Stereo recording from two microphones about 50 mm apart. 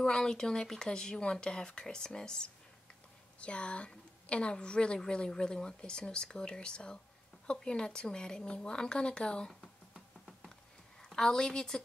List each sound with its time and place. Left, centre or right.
0.0 s a woman's voice: centre
11.0 s a woman's voice: centre